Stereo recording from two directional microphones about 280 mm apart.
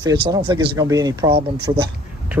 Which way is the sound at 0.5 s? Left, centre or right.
Centre.